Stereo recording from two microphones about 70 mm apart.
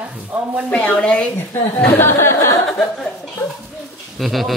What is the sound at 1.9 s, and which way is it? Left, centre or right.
Speech, left.